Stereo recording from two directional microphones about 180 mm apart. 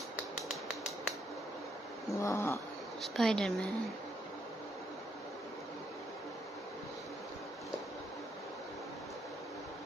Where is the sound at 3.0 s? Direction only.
5° left (ahead or behind).